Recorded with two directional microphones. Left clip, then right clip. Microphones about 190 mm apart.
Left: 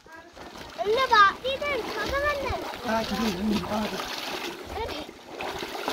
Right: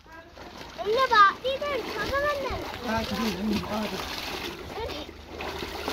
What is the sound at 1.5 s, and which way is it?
Splash, 30° left (ahead or behind).